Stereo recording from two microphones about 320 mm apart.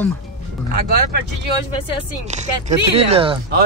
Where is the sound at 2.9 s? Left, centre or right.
Centre.